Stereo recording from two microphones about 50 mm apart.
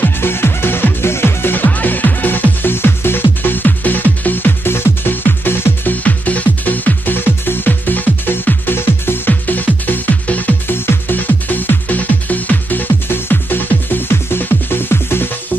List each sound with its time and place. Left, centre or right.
0.0 s music: left
6.0 s music: left
9.3 s music: left
10.7 s music: left